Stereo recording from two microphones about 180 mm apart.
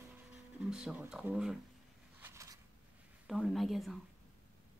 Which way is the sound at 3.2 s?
Centre (ahead or behind).